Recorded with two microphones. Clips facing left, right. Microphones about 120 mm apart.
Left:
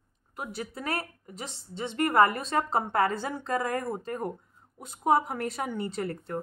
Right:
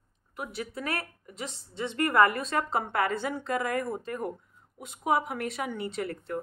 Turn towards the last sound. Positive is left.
turn(degrees=35)  # may be behind; listen again after turning